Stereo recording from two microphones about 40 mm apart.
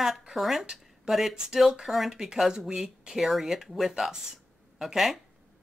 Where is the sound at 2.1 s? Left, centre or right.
Centre.